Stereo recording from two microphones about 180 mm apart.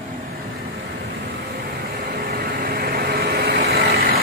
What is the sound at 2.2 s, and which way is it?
Vehicle, 55° right (ahead or behind).